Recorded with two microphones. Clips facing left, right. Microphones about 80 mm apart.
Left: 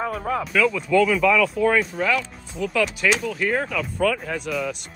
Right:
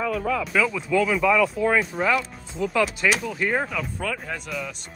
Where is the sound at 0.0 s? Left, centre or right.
Left.